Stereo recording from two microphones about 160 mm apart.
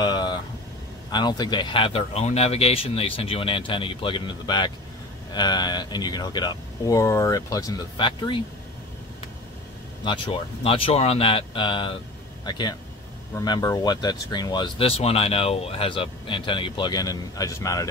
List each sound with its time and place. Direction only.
0.0 s a sound: 25° left (ahead or behind)
1.1 s speech: 25° left (ahead or behind)
10.0 s speech: 30° left (ahead or behind)